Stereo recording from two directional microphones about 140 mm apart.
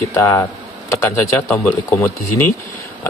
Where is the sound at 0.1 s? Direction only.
20° left (ahead or behind).